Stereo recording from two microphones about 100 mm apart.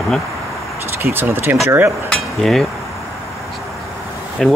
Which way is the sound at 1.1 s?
20° right (ahead or behind).